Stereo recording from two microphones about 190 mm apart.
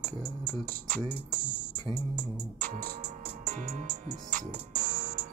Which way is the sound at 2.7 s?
40° right (ahead or behind).